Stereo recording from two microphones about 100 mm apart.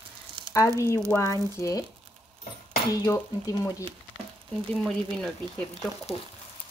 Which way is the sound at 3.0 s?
35° left (ahead or behind).